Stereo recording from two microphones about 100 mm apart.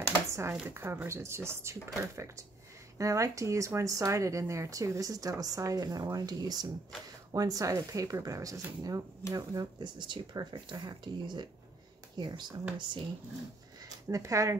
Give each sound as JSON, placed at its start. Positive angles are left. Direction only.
{"t": 0.3, "sound": "a sound", "side_deg": -30}
{"t": 0.7, "sound": "speech", "side_deg": -25}
{"t": 14.0, "sound": "speech", "side_deg": -30}